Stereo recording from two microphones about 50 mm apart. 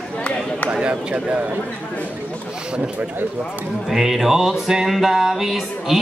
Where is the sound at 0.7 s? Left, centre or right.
Centre.